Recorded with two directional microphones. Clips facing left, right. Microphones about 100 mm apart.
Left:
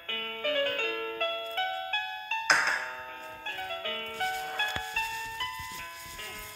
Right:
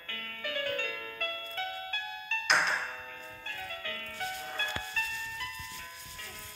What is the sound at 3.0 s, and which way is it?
Music, 40° left (ahead or behind).